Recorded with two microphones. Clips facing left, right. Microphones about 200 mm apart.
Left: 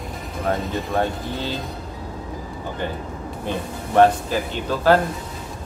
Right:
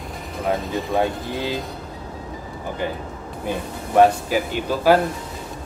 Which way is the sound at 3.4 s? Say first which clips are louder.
Right 1 dB; 10° right (ahead or behind).